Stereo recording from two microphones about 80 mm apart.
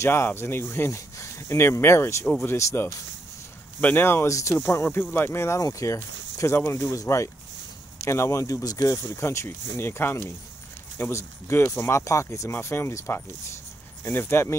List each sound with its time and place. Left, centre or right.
0.0 s speech: left
4.3 s speech: left
5.6 s speech: left
9.0 s speech: left